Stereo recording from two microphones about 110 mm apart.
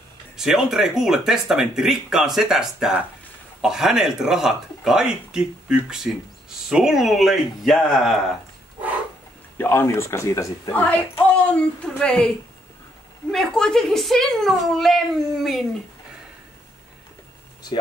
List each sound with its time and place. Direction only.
0.4 s speech: 5° right (ahead or behind)
9.6 s a man's voice: 20° left (ahead or behind)
10.7 s a woman's voice: 15° left (ahead or behind)
13.3 s speech: 5° left (ahead or behind)